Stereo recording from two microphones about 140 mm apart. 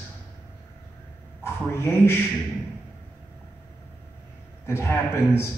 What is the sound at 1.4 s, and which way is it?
Speech, 15° left (ahead or behind).